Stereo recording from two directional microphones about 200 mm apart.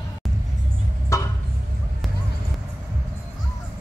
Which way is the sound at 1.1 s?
15° left (ahead or behind).